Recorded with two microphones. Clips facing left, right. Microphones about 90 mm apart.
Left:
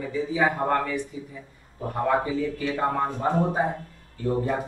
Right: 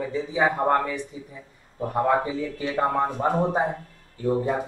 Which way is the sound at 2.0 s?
25° right (ahead or behind).